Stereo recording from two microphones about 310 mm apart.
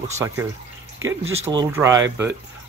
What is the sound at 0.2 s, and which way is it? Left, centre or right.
Speech, centre.